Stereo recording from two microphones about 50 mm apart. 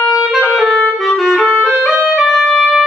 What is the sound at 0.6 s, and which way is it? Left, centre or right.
Clarinet, left.